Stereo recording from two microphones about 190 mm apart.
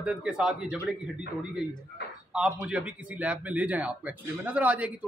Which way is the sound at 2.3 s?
5° right (ahead or behind).